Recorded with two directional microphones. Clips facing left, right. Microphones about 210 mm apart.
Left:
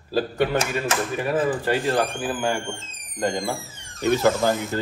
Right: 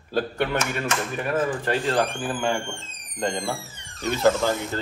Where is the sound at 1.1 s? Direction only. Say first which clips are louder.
Left 2 dB; 5° left (ahead or behind).